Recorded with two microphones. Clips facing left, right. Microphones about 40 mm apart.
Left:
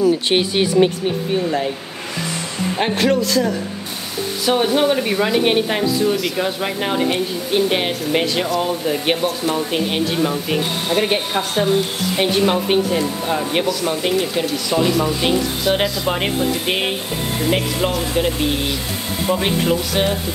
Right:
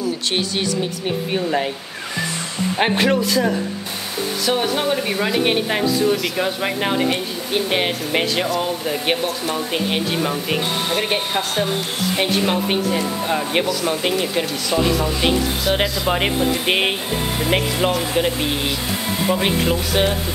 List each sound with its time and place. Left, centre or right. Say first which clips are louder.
0.0 s speech: left 6 dB; centre
1.3 s speech: even; centre
2.8 s speech: even; centre
4.5 s speech: left 4 dB; centre